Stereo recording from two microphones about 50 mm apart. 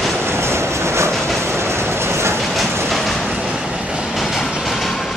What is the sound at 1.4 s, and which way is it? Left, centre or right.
Train, right.